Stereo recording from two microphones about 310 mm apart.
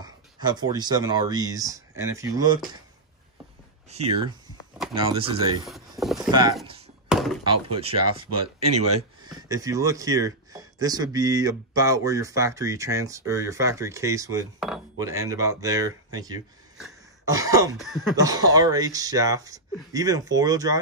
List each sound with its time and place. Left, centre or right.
0.0 s speech: centre
3.9 s speech: centre
5.7 s vehicle: centre
6.3 s speech: centre
7.1 s thunk: centre
7.8 s speech: centre
16.7 s cough: centre
17.7 s a sound: centre
18.1 s speech: centre